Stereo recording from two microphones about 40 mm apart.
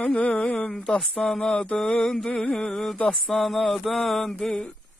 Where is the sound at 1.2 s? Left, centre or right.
Centre.